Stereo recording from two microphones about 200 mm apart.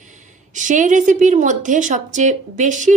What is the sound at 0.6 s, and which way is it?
Speech, 40° right (ahead or behind).